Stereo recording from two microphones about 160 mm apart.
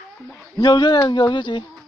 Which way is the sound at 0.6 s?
25° left (ahead or behind).